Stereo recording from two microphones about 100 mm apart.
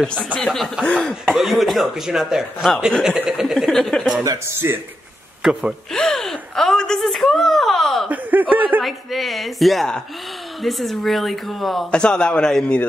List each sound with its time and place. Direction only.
0.0 s speech: 5° left (ahead or behind)
4.2 s speech: 30° right (ahead or behind)
5.4 s speech: 5° right (ahead or behind)
5.9 s speech: 5° left (ahead or behind)
8.1 s a man's voice: 15° right (ahead or behind)
8.8 s speech: centre (ahead or behind)